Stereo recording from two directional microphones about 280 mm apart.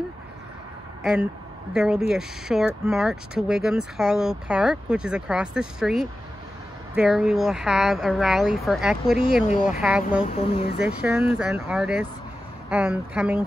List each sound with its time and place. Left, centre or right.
1.0 s speech: centre
9.5 s speech: left
9.8 s speech: centre
10.3 s speech: centre
10.8 s speech: centre